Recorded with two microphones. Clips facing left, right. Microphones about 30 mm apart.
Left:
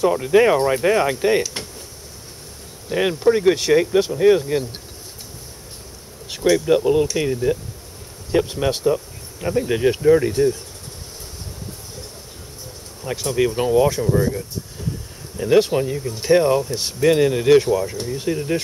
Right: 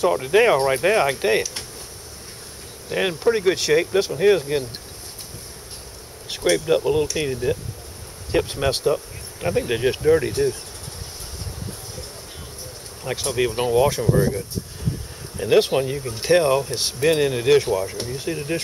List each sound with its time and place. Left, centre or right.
0.0 s speech: centre
2.9 s speech: centre
6.4 s speech: centre
8.5 s speech: centre
13.0 s speech: centre
16.1 s speech: right; by 18.6 s centre